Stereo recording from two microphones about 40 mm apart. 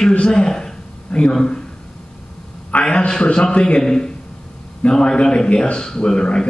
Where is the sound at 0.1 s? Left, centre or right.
Left.